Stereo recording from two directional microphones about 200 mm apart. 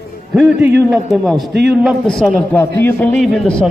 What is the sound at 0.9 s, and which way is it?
A man's voice, centre (ahead or behind).